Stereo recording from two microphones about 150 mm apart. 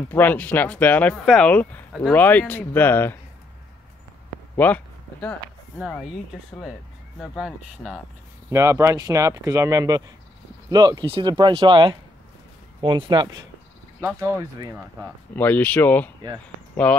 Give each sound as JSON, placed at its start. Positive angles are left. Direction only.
{"t": 0.1, "sound": "speech", "side_deg": 10}
{"t": 4.6, "sound": "speech", "side_deg": 10}
{"t": 7.2, "sound": "speech", "side_deg": -5}
{"t": 8.5, "sound": "speech", "side_deg": -20}
{"t": 14.0, "sound": "speech", "side_deg": -15}
{"t": 15.3, "sound": "speech", "side_deg": 10}